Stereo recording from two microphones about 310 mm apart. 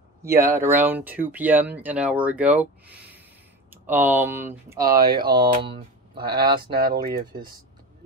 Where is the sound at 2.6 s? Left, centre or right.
Centre.